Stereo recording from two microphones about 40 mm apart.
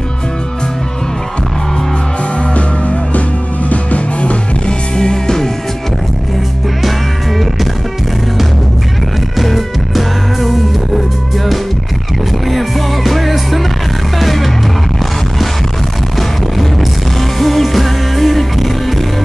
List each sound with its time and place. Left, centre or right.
2.5 s music: left
4.9 s music: centre
9.4 s music: centre
12.4 s music: centre
17.2 s music: centre